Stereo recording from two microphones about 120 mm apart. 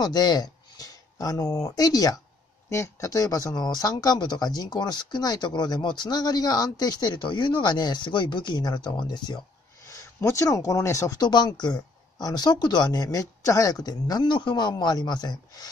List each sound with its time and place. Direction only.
0.0 s speech: 35° left (ahead or behind)
9.8 s speech: 25° left (ahead or behind)